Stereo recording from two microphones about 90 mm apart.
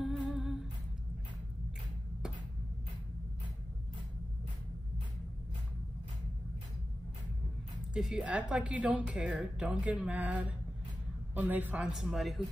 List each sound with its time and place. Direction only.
0.0 s humming: 5° right (ahead or behind)
7.9 s a woman's voice: 5° right (ahead or behind)
11.8 s a man's voice: 5° right (ahead or behind)